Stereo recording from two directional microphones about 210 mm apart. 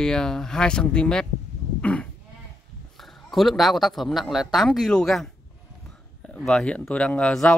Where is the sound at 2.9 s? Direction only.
Centre (ahead or behind).